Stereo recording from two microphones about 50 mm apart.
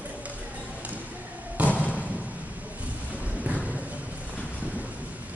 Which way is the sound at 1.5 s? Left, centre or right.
Right.